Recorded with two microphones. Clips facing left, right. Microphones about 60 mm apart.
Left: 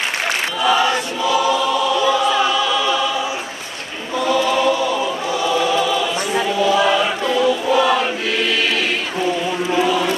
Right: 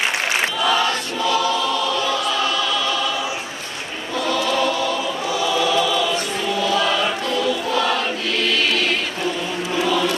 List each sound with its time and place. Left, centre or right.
0.6 s choir: centre
4.2 s choir: centre
9.7 s vehicle: centre